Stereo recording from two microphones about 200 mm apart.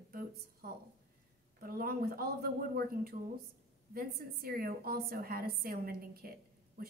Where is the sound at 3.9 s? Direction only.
50° right (ahead or behind).